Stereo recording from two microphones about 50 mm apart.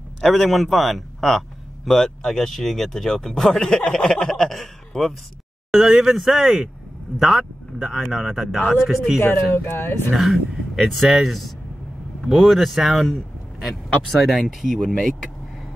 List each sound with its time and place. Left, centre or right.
0.2 s speech: centre
9.7 s speech: left
10.1 s speech: centre